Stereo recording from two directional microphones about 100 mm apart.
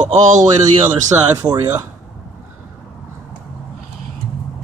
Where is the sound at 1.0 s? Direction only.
35° right (ahead or behind).